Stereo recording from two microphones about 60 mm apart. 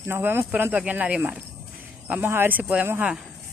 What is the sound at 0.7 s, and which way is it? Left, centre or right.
Speech, right.